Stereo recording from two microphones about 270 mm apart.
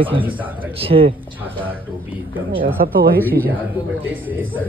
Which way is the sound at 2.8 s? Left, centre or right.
Right.